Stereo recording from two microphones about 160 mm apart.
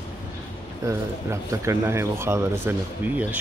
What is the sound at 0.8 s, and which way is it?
Speech, 20° right (ahead or behind).